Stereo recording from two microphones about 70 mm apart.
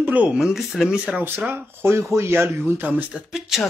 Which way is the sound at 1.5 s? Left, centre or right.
Right.